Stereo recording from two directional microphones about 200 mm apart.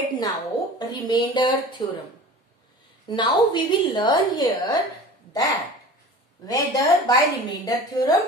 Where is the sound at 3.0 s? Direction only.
25° left (ahead or behind).